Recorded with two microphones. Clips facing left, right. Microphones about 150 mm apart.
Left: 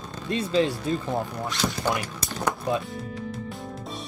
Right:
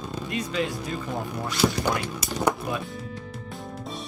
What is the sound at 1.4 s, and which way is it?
Speech, centre (ahead or behind).